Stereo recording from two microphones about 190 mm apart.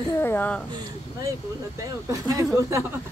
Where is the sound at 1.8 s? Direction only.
20° right (ahead or behind).